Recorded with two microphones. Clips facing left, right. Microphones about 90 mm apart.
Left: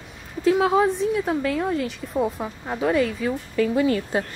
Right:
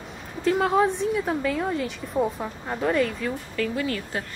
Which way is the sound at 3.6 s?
20° left (ahead or behind).